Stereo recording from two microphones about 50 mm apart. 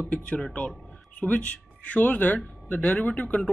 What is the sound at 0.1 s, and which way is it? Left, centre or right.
Speech, centre.